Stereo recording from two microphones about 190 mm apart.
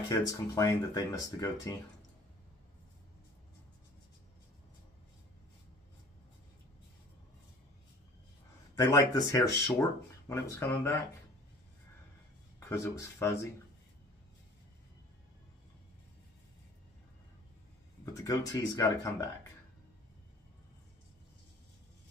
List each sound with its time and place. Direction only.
0.1 s speech: 15° left (ahead or behind)
8.7 s speech: 20° left (ahead or behind)
12.5 s speech: 15° left (ahead or behind)
18.1 s speech: 15° left (ahead or behind)